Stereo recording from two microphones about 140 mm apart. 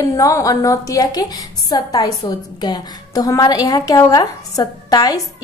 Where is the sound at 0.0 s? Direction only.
20° left (ahead or behind).